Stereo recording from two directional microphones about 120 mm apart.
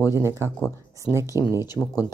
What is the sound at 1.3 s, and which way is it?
Speech, 30° left (ahead or behind).